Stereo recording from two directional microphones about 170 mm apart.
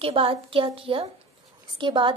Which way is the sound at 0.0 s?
35° right (ahead or behind).